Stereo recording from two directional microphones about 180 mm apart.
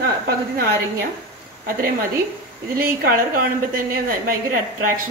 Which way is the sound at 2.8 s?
55° right (ahead or behind).